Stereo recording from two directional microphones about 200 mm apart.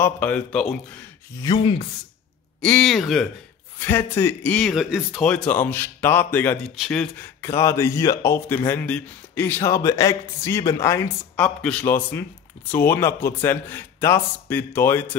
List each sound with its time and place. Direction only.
0.0 s speech: 5° left (ahead or behind)
1.4 s a sound: 25° left (ahead or behind)
2.6 s speech: 5° left (ahead or behind)
3.8 s a man's voice: 10° left (ahead or behind)
7.4 s a man's voice: 15° left (ahead or behind)